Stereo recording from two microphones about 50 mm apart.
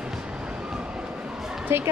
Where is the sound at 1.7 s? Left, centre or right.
Right.